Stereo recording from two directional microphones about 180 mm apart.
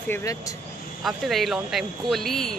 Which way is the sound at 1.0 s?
Centre (ahead or behind).